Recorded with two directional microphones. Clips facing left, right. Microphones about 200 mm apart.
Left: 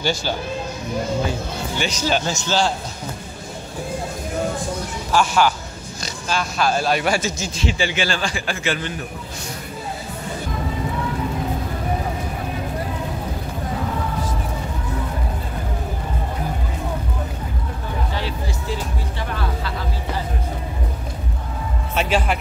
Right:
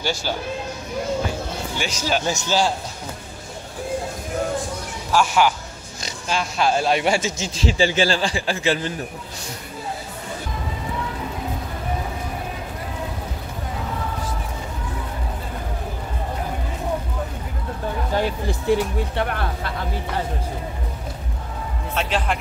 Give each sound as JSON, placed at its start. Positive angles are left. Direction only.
{"t": 0.0, "sound": "speech", "side_deg": -5}
{"t": 1.8, "sound": "speech", "side_deg": -5}
{"t": 5.1, "sound": "speech", "side_deg": -10}
{"t": 6.0, "sound": "speech", "side_deg": -20}
{"t": 7.6, "sound": "a man's voice", "side_deg": -35}
{"t": 18.1, "sound": "speech", "side_deg": -55}
{"t": 21.9, "sound": "a man's voice", "side_deg": 10}